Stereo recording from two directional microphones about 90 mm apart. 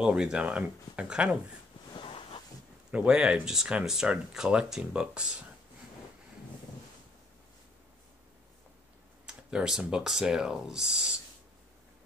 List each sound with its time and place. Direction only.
0.0 s speech: 10° right (ahead or behind)
1.9 s a sound: 70° left (ahead or behind)
2.9 s speech: 10° right (ahead or behind)
9.2 s speech: 5° right (ahead or behind)